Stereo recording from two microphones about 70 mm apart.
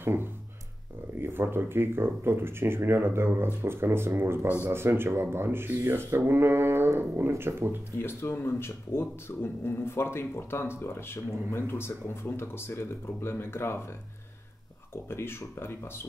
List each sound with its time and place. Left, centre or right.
0.0 s speech: right
8.0 s speech: left
15.0 s speech: left